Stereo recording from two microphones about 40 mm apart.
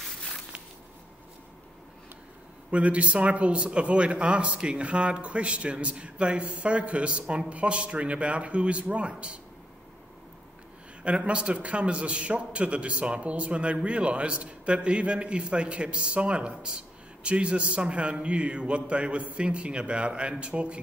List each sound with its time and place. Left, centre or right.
2.7 s speech: right
11.0 s a man's voice: right